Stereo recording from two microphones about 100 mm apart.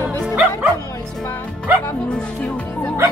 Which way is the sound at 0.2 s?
10° right (ahead or behind).